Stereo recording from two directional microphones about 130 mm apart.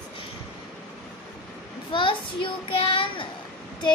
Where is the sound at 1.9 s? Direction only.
40° left (ahead or behind).